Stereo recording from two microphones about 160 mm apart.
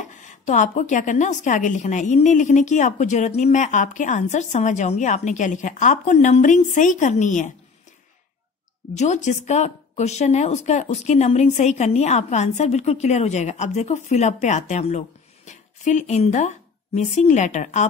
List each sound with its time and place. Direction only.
0.0 s speech: 50° left (ahead or behind)
8.9 s speech: 45° left (ahead or behind)